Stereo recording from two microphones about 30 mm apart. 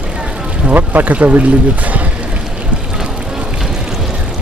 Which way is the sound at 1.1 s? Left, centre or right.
Right.